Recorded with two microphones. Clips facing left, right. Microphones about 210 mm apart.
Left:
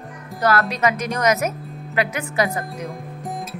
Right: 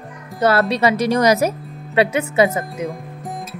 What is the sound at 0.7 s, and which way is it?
Speech, 30° right (ahead or behind).